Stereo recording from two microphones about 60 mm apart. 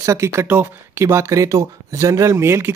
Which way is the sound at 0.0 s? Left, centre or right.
Right.